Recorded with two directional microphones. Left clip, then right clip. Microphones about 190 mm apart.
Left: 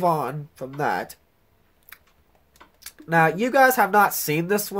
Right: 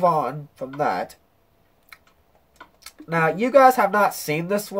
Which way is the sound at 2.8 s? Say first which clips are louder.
Left 2 dB; 55° left (ahead or behind).